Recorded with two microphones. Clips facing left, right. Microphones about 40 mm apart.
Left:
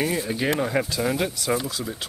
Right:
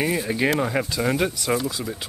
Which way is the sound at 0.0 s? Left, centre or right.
Centre.